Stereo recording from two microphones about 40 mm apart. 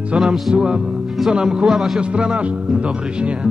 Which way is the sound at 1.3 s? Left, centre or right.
Centre.